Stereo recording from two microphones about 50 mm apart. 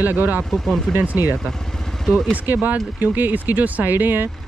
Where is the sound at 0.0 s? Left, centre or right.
Right.